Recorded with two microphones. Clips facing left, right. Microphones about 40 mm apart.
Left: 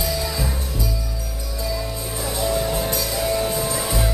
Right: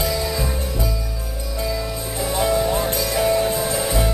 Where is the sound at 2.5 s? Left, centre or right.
Centre.